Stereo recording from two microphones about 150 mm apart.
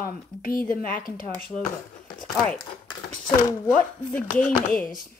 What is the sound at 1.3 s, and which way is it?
Speech, 5° left (ahead or behind).